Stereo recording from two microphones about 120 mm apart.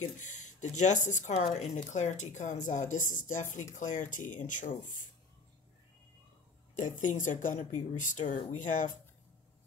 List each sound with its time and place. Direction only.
0.0 s speech: 90° left
6.8 s speech: 90° left